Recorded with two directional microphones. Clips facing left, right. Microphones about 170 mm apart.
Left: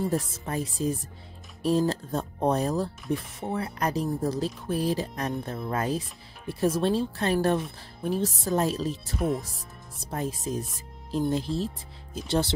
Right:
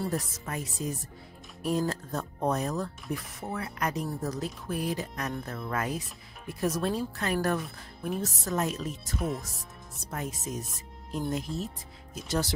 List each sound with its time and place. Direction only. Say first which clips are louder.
0.1 s speech: left 4 dB; 30° left (ahead or behind)